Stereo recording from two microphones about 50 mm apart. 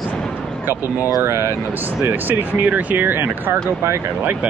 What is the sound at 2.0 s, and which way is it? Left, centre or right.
Speech, right.